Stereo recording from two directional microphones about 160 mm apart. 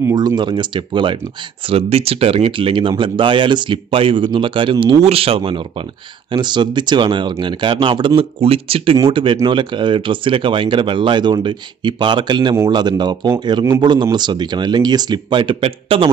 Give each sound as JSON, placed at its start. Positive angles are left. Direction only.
{"t": 0.0, "sound": "speech", "side_deg": -20}